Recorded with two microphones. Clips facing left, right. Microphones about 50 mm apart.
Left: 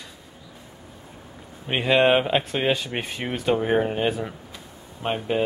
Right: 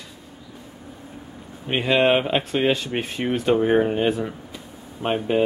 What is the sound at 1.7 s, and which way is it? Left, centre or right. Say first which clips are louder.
Speech: even; centre.